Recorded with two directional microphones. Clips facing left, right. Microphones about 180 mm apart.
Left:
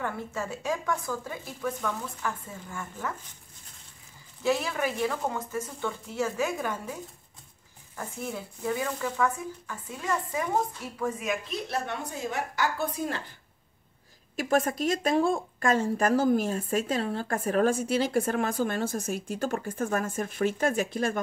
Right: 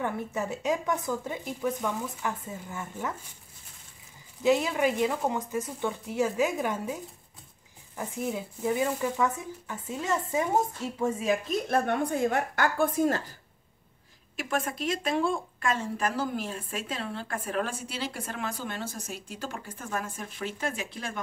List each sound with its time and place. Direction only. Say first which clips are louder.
0.0 s speech: right 2 dB; 20° right (ahead or behind)
4.4 s speech: right 3 dB; 20° right (ahead or behind)
11.4 s a woman's voice: right 6 dB; 50° right (ahead or behind)
14.3 s speech: left 5 dB; 40° left (ahead or behind)